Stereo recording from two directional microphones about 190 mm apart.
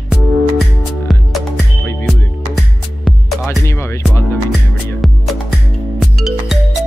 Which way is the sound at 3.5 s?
15° left (ahead or behind).